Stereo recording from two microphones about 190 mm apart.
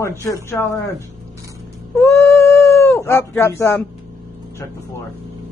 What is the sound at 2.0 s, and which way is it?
Cat, 15° left (ahead or behind).